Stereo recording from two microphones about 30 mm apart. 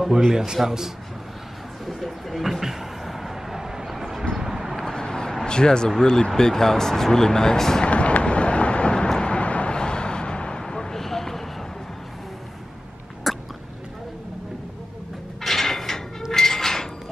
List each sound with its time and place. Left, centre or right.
0.1 s a man's voice: centre
1.9 s a sound: centre
4.4 s vehicle: centre
4.9 s vehicle: left
5.4 s speech: left
7.8 s a sound: left
9.2 s vehicle: left
9.8 s vehicle: left
10.6 s a sound: centre
13.3 s a sound: centre
15.4 s mechanisms: centre
16.3 s dishes: centre